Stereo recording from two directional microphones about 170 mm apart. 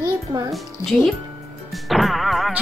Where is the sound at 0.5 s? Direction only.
Centre (ahead or behind).